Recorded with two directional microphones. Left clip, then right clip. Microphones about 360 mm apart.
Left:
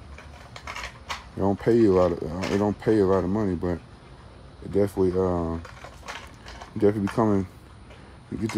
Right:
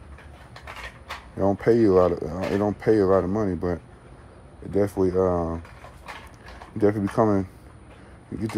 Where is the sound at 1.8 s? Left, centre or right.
Centre.